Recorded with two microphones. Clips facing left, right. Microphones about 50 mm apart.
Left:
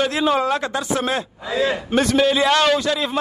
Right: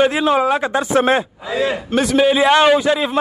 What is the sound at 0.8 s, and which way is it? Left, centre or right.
A man's voice, right.